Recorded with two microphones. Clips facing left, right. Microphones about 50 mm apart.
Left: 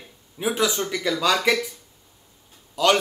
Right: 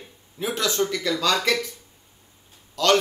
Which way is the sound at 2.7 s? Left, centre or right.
Centre.